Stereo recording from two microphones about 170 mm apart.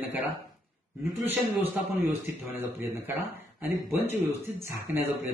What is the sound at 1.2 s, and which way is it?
A man's voice, 10° right (ahead or behind).